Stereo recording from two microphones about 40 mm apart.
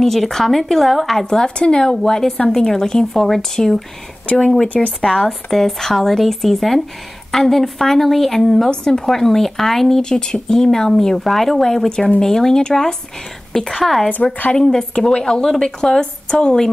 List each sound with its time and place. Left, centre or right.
0.0 s speech: centre
1.2 s speech: centre
8.6 s speech: left
9.0 s speech: centre; by 16.5 s left